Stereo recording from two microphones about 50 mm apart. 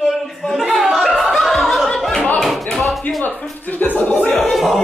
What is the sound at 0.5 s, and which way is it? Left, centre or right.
Chuckle, centre.